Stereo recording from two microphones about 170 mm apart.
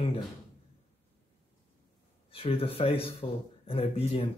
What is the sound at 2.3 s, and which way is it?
Speech, 35° left (ahead or behind).